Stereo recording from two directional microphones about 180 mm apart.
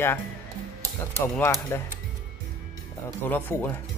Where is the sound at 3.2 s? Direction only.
10° left (ahead or behind).